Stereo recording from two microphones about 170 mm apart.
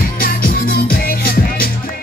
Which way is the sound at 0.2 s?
60° left (ahead or behind).